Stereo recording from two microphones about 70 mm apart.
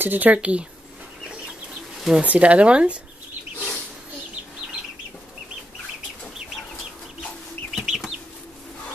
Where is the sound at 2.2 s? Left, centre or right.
Right.